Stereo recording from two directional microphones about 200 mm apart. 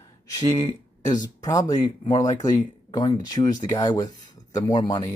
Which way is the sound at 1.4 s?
20° left (ahead or behind).